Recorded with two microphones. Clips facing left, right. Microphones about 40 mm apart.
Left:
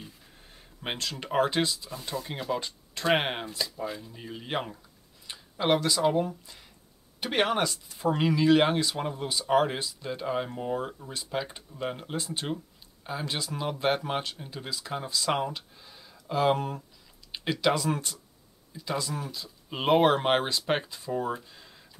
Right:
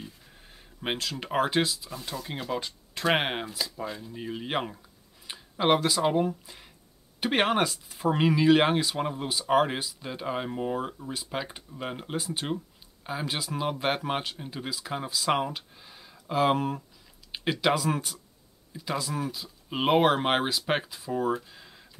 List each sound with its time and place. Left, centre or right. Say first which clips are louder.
0.0 s a sound: right 3 dB; centre
1.2 s speech: even; centre
4.1 s speech: right 3 dB; centre